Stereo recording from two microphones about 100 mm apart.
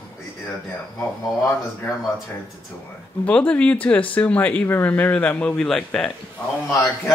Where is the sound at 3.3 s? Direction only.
10° left (ahead or behind).